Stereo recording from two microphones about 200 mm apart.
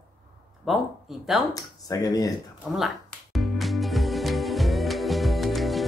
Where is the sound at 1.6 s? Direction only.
20° left (ahead or behind).